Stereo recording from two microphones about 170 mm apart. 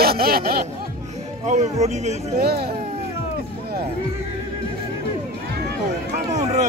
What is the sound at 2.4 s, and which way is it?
Speech, 70° right (ahead or behind).